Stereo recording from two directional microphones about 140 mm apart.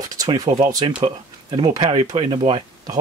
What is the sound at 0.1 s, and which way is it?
Speech, 30° right (ahead or behind).